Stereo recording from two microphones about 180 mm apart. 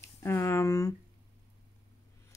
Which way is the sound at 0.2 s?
15° left (ahead or behind).